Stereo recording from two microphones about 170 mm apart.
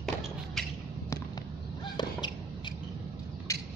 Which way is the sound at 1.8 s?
25° left (ahead or behind).